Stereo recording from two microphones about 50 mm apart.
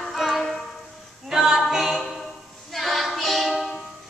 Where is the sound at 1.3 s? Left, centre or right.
Centre.